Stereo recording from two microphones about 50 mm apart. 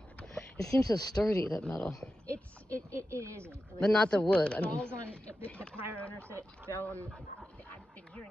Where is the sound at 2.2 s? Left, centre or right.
Left.